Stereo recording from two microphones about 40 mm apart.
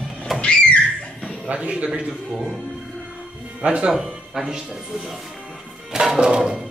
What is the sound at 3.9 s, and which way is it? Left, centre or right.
Speech, centre.